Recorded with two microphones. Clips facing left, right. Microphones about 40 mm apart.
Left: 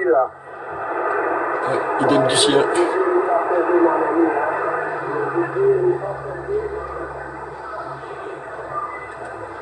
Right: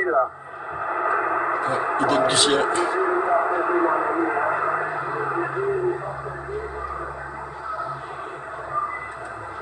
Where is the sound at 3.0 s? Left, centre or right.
Centre.